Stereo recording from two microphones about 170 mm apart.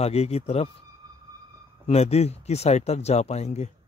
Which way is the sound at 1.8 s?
40° left (ahead or behind).